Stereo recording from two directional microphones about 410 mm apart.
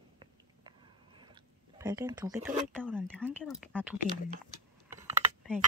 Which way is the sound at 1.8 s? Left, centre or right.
Centre.